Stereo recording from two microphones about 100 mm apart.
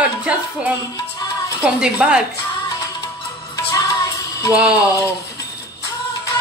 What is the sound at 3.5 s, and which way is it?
Music, 35° left (ahead or behind).